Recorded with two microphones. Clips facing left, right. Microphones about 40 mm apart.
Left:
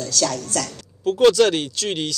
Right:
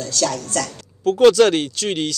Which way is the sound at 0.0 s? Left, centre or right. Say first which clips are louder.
Right 1 dB; right.